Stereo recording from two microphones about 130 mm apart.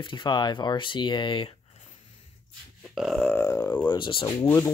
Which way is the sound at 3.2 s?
15° left (ahead or behind).